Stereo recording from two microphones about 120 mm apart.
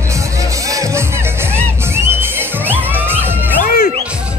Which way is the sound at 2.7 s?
15° right (ahead or behind).